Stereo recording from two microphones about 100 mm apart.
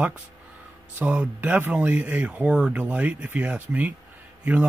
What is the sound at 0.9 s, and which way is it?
Speech, 15° right (ahead or behind).